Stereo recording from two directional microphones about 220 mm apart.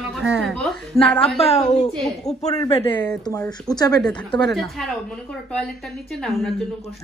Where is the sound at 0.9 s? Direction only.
25° left (ahead or behind).